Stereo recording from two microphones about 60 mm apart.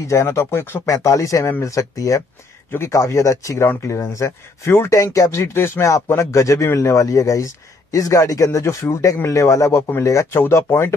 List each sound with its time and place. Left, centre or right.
0.1 s speech: left
0.8 s a man's voice: left
4.6 s speech: left
4.9 s a man's voice: left
8.6 s speech: left
9.2 s a man's voice: left